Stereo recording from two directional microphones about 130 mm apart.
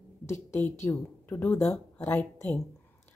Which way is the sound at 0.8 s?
20° left (ahead or behind).